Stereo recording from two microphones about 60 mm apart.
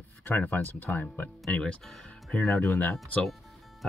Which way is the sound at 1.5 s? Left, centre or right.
Centre.